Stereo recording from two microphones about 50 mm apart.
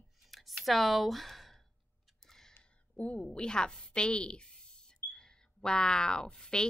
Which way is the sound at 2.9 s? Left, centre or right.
Left.